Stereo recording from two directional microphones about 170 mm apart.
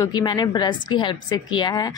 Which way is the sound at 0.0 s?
25° left (ahead or behind).